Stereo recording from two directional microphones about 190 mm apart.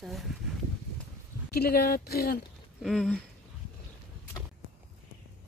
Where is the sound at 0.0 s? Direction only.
Centre (ahead or behind).